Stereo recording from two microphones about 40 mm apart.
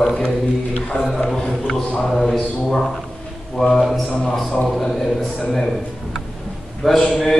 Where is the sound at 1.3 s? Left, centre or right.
Centre.